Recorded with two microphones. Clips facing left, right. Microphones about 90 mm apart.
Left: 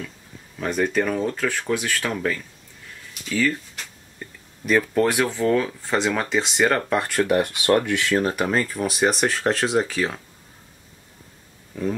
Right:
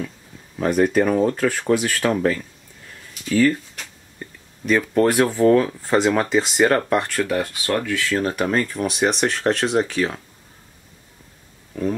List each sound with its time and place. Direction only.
0.6 s speech: 5° right (ahead or behind)
4.2 s a sound: centre (ahead or behind)
5.1 s speech: 15° right (ahead or behind)
7.1 s speech: 20° left (ahead or behind)
8.2 s speech: 5° left (ahead or behind)